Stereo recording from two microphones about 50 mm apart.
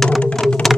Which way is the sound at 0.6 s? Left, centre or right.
Centre.